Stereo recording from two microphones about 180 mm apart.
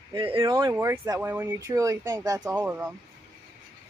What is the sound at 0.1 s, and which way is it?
Speech, 25° right (ahead or behind).